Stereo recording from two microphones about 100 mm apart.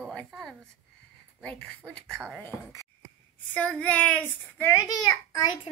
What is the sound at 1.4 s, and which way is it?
Speech, 10° left (ahead or behind).